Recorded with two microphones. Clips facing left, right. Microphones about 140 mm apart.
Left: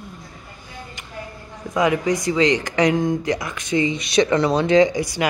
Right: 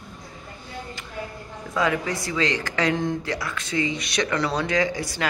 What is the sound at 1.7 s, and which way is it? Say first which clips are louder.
Speech: left 5 dB; 15° left (ahead or behind).